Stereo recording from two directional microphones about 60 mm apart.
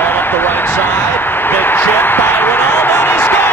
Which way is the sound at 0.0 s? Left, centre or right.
Left.